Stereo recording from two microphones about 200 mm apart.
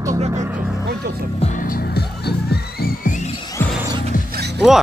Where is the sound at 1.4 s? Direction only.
40° left (ahead or behind).